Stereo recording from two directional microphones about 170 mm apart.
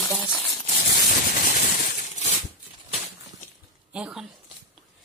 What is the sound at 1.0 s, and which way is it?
Shatter, 55° left (ahead or behind).